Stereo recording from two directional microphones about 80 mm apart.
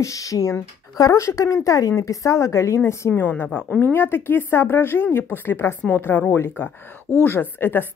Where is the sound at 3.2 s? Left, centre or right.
Left.